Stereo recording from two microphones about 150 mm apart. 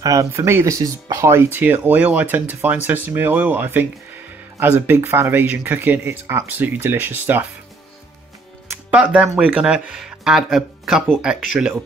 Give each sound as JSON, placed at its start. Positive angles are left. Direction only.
{"t": 0.0, "sound": "speech", "side_deg": -20}
{"t": 8.6, "sound": "music", "side_deg": -10}
{"t": 9.4, "sound": "speech", "side_deg": -5}